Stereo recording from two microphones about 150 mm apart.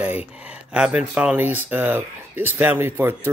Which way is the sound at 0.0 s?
10° right (ahead or behind).